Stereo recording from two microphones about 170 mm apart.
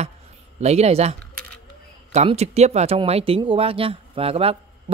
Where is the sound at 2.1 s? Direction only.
40° right (ahead or behind).